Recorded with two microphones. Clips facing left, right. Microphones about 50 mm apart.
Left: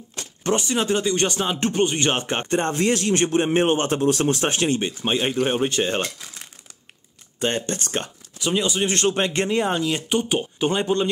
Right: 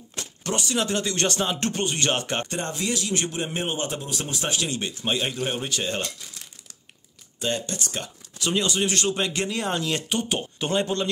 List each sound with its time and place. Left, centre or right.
0.4 s speech: left
4.7 s speech: left
7.3 s speech: left
8.4 s speech: centre
8.8 s speech: left
9.6 s speech: centre